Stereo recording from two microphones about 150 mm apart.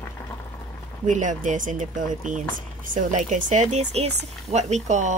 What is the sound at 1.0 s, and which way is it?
Speech, 55° right (ahead or behind).